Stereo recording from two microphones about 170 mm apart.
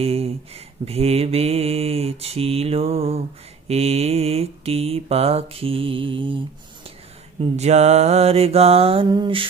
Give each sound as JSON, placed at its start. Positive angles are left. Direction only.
{"t": 0.0, "sound": "a sound", "side_deg": -35}
{"t": 0.8, "sound": "mantra", "side_deg": -35}
{"t": 7.3, "sound": "mantra", "side_deg": -40}